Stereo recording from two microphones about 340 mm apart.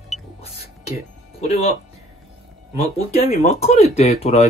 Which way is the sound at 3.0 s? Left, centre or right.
Centre.